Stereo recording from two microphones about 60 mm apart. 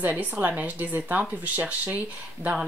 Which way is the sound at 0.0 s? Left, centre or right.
Right.